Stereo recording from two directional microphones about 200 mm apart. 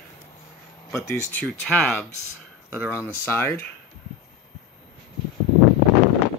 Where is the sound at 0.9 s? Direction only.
10° left (ahead or behind).